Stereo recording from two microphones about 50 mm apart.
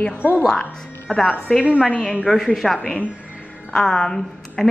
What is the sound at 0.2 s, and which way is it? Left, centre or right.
Speech, left.